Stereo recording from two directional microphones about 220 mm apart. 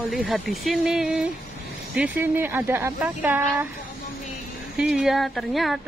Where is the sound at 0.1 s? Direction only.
Centre (ahead or behind).